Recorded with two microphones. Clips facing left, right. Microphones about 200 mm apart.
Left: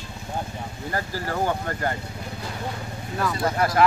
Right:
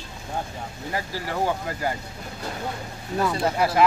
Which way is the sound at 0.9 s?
Centre (ahead or behind).